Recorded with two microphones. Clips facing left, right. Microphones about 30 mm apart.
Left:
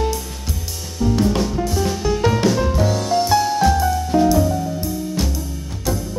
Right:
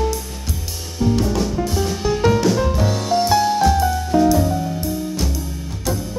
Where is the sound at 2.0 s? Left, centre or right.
Centre.